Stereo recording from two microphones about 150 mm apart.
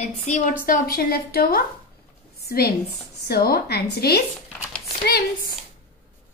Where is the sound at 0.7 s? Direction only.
80° left.